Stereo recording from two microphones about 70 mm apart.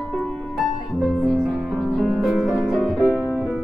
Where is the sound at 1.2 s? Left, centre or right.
Centre.